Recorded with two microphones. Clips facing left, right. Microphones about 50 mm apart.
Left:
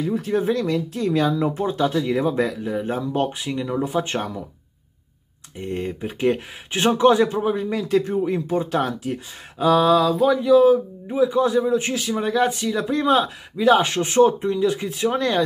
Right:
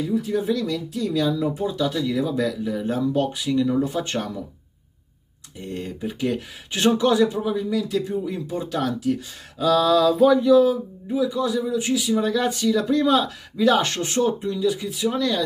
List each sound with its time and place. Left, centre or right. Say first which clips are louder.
0.1 s speech: left 1 dB; left
5.6 s speech: left 3 dB; left
9.9 s a sound: right 2 dB; centre
10.6 s speech: left 4 dB; left
12.2 s speech: left 1 dB; left